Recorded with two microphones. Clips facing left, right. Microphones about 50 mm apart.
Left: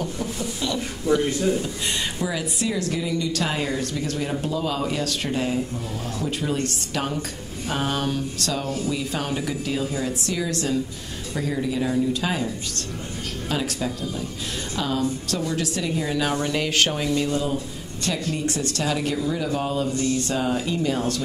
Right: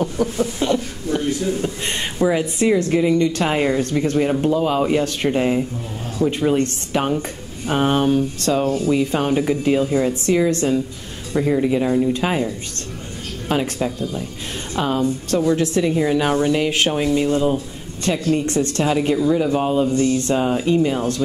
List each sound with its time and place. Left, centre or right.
0.0 s a sound: right
2.2 s a woman's voice: right
13.5 s a woman's voice: right
17.3 s a woman's voice: right